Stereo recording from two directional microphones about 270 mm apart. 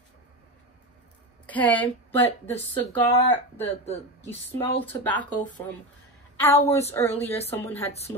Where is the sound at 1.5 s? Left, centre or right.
Centre.